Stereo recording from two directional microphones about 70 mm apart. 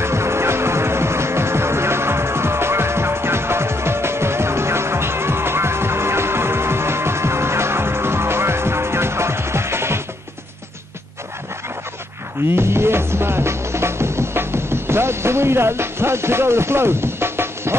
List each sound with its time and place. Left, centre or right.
0.0 s music: right
12.4 s music: right